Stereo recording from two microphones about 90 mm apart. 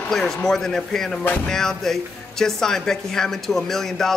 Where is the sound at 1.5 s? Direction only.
5° left (ahead or behind).